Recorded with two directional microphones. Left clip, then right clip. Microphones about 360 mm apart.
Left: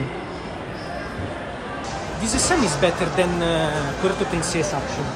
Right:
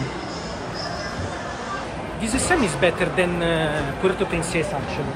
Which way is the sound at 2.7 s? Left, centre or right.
Centre.